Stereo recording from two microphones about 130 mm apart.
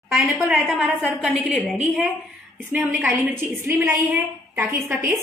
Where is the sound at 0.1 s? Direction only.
Centre (ahead or behind).